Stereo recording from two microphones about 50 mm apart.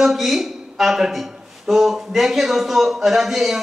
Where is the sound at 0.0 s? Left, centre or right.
Centre.